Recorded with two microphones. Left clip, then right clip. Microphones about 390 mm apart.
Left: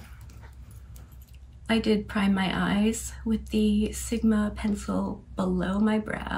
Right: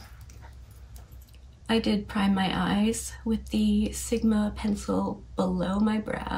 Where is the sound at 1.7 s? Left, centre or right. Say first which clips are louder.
Left 1 dB; centre.